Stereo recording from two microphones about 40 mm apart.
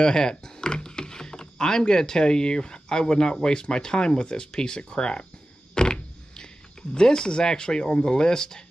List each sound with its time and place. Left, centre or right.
0.0 s speech: centre